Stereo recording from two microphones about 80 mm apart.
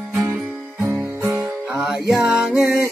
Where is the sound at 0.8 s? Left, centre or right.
Right.